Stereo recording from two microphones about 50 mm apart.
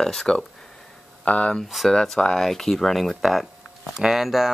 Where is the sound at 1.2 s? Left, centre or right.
Left.